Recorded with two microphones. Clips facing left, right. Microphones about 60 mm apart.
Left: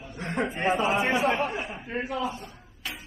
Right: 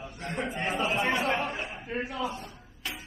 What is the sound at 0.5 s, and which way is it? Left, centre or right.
A man's voice, centre.